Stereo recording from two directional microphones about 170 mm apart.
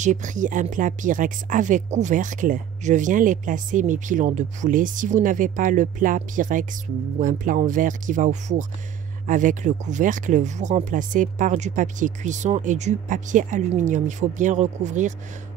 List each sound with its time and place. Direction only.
0.0 s speech: 45° right (ahead or behind)